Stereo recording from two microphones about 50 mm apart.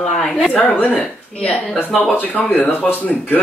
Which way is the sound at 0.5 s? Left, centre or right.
Left.